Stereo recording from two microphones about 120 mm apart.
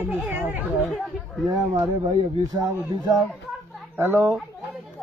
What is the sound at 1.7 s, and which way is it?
Speech, 30° right (ahead or behind).